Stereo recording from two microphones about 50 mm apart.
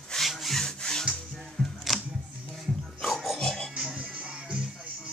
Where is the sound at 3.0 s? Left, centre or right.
Centre.